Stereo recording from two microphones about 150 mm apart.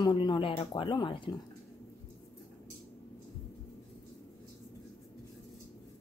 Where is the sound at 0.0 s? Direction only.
30° left (ahead or behind).